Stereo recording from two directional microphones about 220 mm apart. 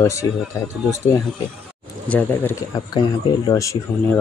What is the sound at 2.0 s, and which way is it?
Speech, 10° left (ahead or behind).